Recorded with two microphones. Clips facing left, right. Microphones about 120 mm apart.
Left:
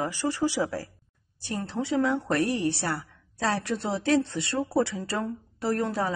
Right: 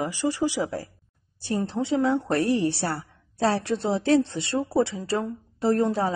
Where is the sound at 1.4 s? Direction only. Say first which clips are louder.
Right 4 dB; 30° right (ahead or behind).